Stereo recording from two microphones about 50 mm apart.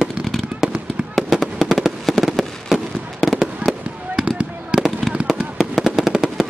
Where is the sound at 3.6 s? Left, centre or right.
Right.